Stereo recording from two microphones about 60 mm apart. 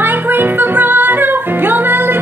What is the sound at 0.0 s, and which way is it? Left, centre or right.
Music, right.